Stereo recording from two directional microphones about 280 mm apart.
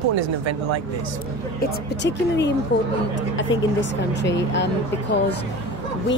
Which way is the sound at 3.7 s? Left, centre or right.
Left.